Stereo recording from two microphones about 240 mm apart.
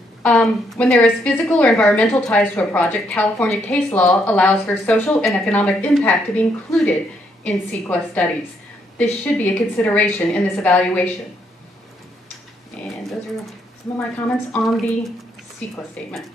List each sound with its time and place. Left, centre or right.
0.2 s a woman's voice: centre
12.8 s a sound: centre
14.5 s a woman's voice: centre
16.0 s a woman's voice: centre